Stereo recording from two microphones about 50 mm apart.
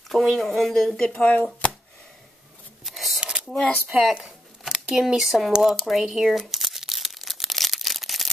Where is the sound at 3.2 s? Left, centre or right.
Right.